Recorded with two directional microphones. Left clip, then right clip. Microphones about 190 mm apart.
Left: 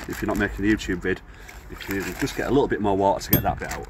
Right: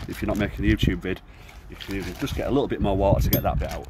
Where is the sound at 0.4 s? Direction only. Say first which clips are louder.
Left 3 dB; 35° right (ahead or behind).